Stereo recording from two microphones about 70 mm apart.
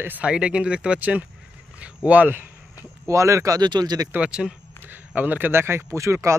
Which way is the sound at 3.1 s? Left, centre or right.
Right.